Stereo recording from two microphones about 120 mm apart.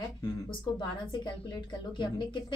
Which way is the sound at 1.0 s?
40° left (ahead or behind).